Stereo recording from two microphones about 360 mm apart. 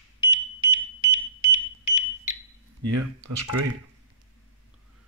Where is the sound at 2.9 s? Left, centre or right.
Right.